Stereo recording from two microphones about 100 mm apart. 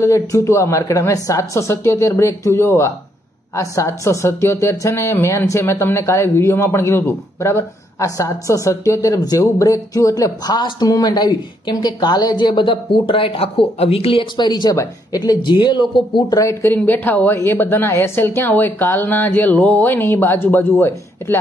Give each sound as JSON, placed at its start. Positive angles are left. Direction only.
{"t": 0.0, "sound": "a woman's voice", "side_deg": 30}
{"t": 14.4, "sound": "speech", "side_deg": 45}
{"t": 16.3, "sound": "a woman's voice", "side_deg": 30}
{"t": 16.7, "sound": "a woman's voice", "side_deg": 20}